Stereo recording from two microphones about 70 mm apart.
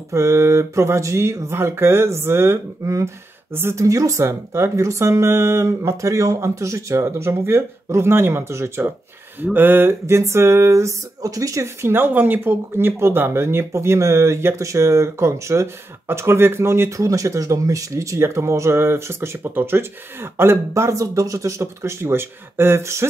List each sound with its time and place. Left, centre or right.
0.1 s speech: right
9.4 s speech: right
17.0 s speech: right